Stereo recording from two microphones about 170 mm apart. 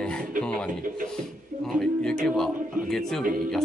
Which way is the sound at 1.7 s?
Centre (ahead or behind).